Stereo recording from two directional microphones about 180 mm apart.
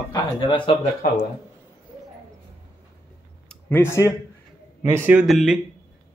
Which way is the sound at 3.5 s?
10° left (ahead or behind).